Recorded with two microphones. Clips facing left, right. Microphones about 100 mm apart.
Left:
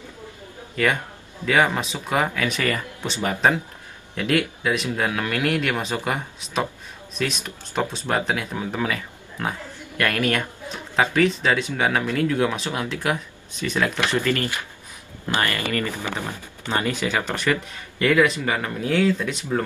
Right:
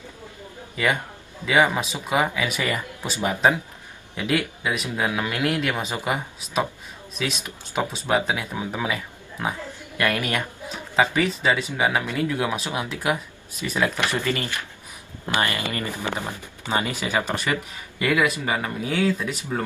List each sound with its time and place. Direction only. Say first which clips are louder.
1.4 s a man's voice: even; 10° right (ahead or behind)